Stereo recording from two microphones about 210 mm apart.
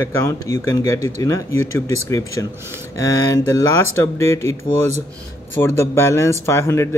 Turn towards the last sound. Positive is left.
turn(degrees=10)  # may be behind; listen again after turning